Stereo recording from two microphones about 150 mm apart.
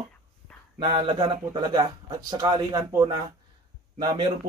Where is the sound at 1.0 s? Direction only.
40° right (ahead or behind).